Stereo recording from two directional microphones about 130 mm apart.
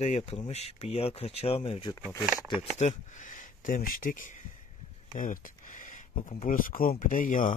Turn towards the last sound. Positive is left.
turn(degrees=90)